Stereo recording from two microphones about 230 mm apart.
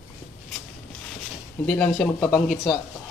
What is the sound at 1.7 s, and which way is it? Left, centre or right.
Speech, centre.